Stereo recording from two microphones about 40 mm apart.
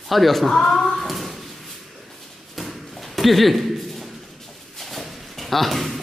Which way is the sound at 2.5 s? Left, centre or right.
Centre.